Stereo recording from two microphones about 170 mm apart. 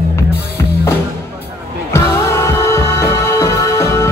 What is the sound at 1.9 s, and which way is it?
Music, 15° left (ahead or behind).